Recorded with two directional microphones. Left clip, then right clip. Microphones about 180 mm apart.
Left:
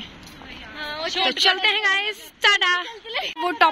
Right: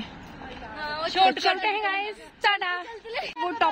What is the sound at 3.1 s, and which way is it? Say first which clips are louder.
Speech: left 5 dB; 45° left (ahead or behind).